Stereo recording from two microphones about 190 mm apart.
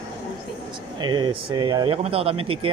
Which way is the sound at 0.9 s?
20° right (ahead or behind).